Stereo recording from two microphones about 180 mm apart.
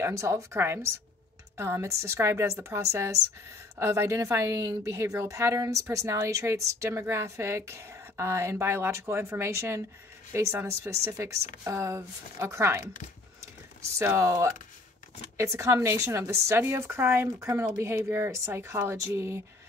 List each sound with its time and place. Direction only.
0.0 s a woman's voice: 15° right (ahead or behind)
13.9 s a woman's voice: 15° right (ahead or behind)